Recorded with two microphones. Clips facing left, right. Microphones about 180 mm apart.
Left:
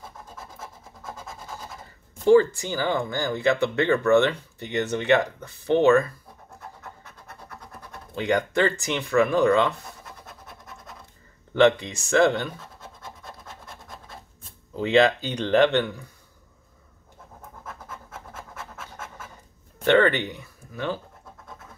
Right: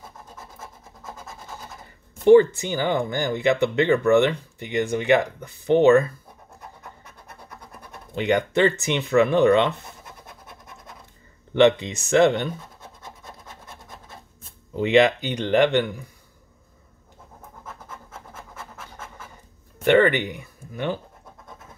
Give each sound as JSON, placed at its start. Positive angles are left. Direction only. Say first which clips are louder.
{"t": 2.2, "sound": "speech", "louder": "right 3 dB", "side_deg": -20}
{"t": 8.1, "sound": "speech", "louder": "right 2 dB", "side_deg": -20}
{"t": 11.5, "sound": "speech", "louder": "right 2 dB", "side_deg": -20}
{"t": 14.8, "sound": "speech", "louder": "right 2 dB", "side_deg": -20}
{"t": 18.6, "sound": "pant", "louder": "even", "side_deg": 0}
{"t": 19.8, "sound": "speech", "louder": "right 2 dB", "side_deg": -15}